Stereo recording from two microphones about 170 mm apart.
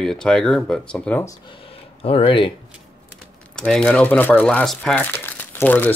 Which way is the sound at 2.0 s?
35° left (ahead or behind).